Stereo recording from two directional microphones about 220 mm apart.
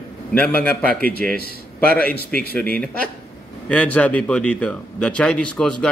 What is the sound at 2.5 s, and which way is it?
A man's voice, 5° left (ahead or behind).